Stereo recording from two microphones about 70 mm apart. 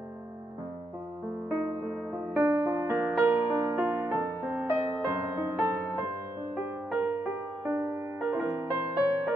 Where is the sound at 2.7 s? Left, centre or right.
Right.